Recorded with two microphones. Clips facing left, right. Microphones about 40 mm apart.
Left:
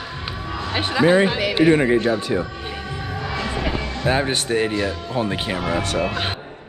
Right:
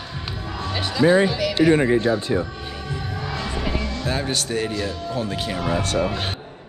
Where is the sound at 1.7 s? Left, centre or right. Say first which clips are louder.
Left 1 dB; left.